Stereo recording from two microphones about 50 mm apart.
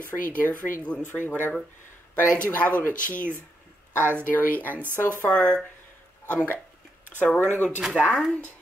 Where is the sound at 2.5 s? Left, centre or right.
Left.